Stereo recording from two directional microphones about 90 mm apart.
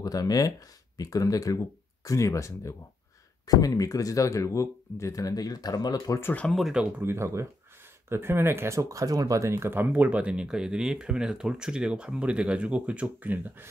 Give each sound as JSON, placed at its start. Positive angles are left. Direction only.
{"t": 0.0, "sound": "speech", "side_deg": 45}
{"t": 6.5, "sound": "speech", "side_deg": 0}
{"t": 7.0, "sound": "speech", "side_deg": -30}